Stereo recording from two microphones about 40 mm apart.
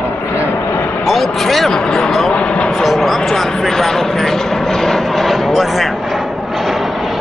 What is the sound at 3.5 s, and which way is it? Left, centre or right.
Vehicle, centre.